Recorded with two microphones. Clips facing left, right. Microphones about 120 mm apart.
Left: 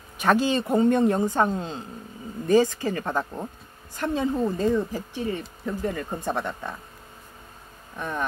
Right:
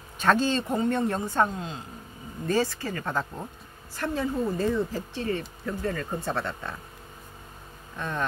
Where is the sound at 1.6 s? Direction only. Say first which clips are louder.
Left 3 dB; 30° left (ahead or behind).